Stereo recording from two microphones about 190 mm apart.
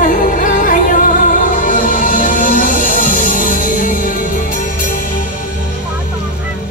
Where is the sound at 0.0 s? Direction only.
45° left (ahead or behind).